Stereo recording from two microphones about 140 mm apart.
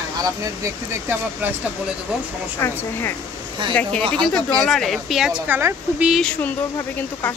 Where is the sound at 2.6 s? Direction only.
15° left (ahead or behind).